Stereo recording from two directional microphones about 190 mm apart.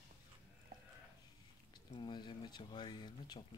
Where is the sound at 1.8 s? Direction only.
25° left (ahead or behind).